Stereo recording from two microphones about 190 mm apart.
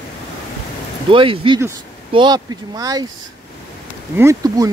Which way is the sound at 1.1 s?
25° right (ahead or behind).